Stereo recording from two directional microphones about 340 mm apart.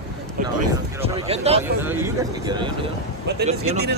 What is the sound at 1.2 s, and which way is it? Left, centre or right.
Speech, centre.